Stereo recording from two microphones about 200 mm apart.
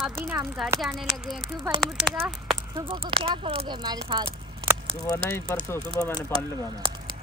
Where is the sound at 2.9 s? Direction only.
25° right (ahead or behind).